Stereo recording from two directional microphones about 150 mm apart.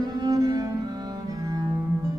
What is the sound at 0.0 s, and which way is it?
Music, 25° right (ahead or behind).